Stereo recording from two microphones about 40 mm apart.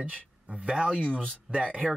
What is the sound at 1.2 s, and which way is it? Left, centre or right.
Speech, right.